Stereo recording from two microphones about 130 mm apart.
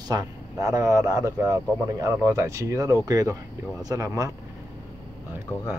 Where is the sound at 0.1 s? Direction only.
25° right (ahead or behind).